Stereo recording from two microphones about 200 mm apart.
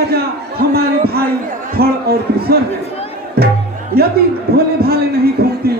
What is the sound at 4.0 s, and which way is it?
A man's voice, 50° right (ahead or behind).